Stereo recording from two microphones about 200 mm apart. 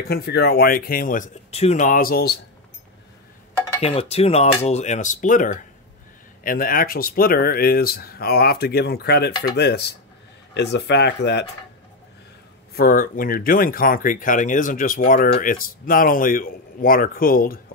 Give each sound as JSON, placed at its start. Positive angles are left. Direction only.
{"t": 0.1, "sound": "speech", "side_deg": 55}
{"t": 3.8, "sound": "speech", "side_deg": 30}
{"t": 12.7, "sound": "speech", "side_deg": 45}